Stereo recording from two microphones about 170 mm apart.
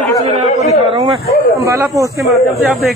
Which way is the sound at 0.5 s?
40° left (ahead or behind).